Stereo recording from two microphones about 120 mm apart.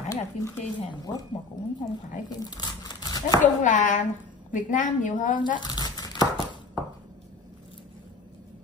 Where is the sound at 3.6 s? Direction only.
90° left.